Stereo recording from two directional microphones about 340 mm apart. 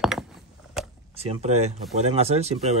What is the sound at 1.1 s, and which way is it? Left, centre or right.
Speech, centre.